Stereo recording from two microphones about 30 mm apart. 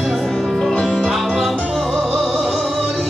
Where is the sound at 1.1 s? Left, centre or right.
Centre.